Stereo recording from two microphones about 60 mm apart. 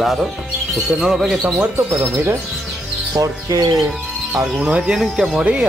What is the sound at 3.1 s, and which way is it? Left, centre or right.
Speech, right.